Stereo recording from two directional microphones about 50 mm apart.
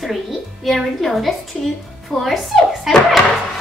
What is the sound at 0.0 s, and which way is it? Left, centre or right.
A woman's voice, centre.